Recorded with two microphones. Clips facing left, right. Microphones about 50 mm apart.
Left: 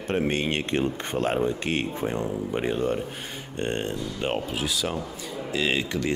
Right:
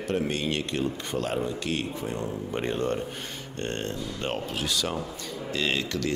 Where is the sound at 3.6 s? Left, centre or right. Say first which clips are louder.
Left 4 dB; centre.